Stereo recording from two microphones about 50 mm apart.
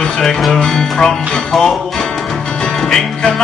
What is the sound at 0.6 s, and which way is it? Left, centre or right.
Music, centre.